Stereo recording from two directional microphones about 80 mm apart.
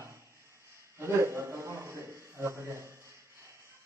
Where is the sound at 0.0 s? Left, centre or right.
Right.